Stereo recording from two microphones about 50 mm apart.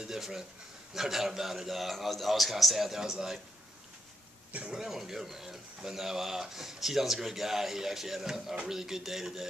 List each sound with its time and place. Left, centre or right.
0.0 s a man's voice: centre
4.5 s speech: right
4.7 s speech: centre